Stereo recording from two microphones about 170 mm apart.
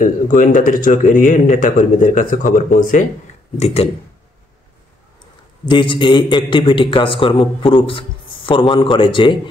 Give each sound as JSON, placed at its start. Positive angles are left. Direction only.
{"t": 0.0, "sound": "speech", "side_deg": 50}
{"t": 3.5, "sound": "speech", "side_deg": 40}
{"t": 5.7, "sound": "a man's voice", "side_deg": 30}